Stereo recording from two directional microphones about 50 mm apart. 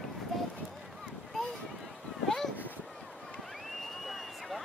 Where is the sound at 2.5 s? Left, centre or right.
Left.